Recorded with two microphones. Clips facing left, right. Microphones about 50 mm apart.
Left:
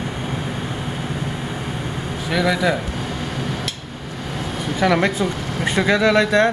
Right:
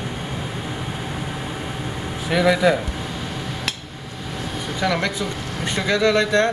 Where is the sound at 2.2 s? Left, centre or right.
Centre.